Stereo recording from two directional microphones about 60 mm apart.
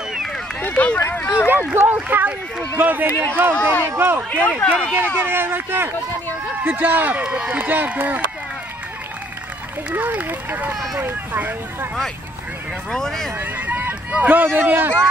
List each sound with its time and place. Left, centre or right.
0.6 s run: left
1.0 s speech: left
1.8 s speech: right
4.3 s speech: left
4.9 s speech: right
9.9 s speech: right
12.9 s speech: centre
13.4 s speech: right